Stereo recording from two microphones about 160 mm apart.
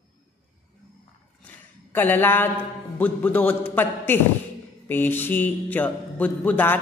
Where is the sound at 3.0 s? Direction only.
10° left (ahead or behind).